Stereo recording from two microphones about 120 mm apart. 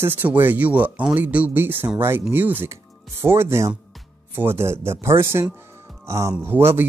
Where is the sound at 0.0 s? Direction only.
15° right (ahead or behind).